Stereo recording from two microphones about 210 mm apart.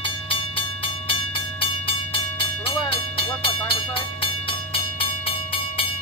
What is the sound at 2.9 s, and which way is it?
Train, 25° left (ahead or behind).